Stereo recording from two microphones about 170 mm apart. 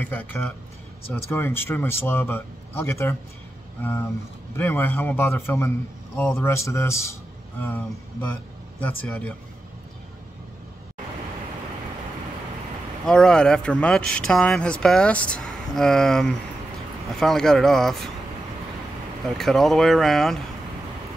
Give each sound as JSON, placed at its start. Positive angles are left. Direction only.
{"t": 0.0, "sound": "a man's voice", "side_deg": 10}
{"t": 13.0, "sound": "speech", "side_deg": 5}
{"t": 19.2, "sound": "speech", "side_deg": 0}